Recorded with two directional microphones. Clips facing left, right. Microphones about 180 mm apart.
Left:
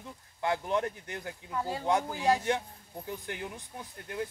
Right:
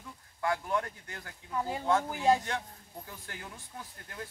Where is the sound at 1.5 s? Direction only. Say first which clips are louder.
Even; 15° right (ahead or behind).